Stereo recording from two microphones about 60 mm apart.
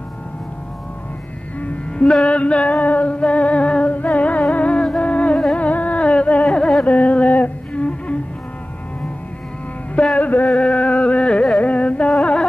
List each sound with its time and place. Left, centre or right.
2.2 s a sound: left
4.9 s music: left
5.6 s a sound: left
6.8 s music: left
10.1 s music: left
11.5 s carnatic music: left